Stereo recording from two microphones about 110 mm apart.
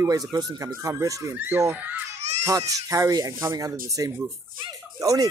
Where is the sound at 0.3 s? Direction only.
35° right (ahead or behind).